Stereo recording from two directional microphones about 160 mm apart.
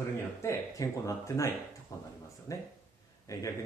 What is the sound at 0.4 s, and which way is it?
Speech, 20° left (ahead or behind).